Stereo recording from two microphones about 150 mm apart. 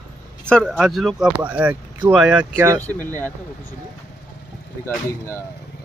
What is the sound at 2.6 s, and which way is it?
Speech, 20° right (ahead or behind).